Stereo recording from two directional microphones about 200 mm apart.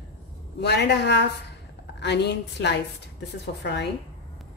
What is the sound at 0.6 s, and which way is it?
A woman's voice, 55° left (ahead or behind).